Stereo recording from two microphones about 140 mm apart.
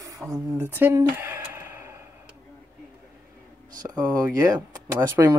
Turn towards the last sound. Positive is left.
turn(degrees=-30)  # may be behind; listen again after turning